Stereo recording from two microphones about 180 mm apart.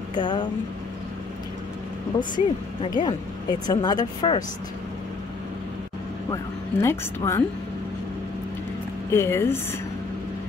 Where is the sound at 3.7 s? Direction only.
20° left (ahead or behind).